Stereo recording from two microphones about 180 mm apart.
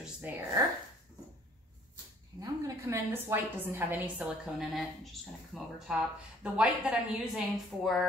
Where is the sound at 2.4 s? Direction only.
15° right (ahead or behind).